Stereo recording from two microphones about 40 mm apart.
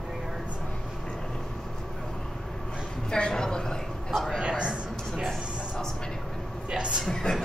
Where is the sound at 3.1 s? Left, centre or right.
Centre.